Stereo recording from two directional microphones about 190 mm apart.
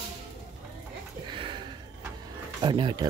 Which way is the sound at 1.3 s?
25° right (ahead or behind).